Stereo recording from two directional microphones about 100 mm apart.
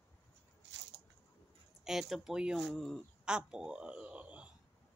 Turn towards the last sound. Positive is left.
turn(degrees=-15)  # may be behind; listen again after turning